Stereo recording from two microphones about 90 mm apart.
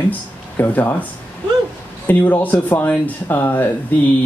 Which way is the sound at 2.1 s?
20° left (ahead or behind).